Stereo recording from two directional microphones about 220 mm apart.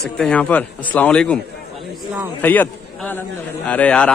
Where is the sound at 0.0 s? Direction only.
5° left (ahead or behind).